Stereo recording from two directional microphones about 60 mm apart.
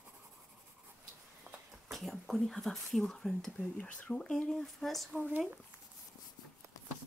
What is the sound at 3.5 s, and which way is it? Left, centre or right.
Speech, centre.